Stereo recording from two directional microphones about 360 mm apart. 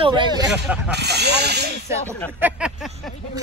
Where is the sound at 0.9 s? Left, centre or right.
Right.